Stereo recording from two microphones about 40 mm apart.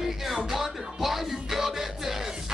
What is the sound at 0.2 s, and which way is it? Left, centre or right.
Music, centre.